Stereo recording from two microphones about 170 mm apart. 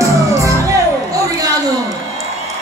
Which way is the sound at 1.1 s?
20° right (ahead or behind).